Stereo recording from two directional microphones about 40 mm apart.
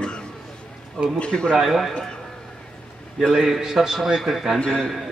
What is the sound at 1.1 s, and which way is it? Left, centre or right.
Speech, left.